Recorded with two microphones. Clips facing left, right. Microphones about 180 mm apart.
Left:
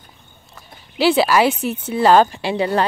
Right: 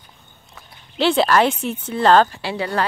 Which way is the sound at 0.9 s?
10° left (ahead or behind).